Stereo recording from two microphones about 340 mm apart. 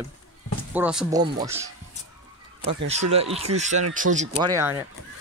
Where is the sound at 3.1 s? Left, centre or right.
Centre.